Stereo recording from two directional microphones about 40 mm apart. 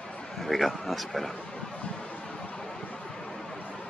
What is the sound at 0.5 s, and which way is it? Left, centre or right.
Speech, centre.